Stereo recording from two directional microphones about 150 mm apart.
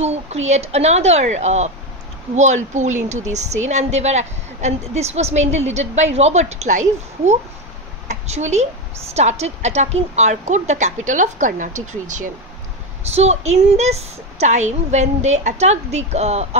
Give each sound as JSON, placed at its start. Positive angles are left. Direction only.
{"t": 0.0, "sound": "a woman's voice", "side_deg": -45}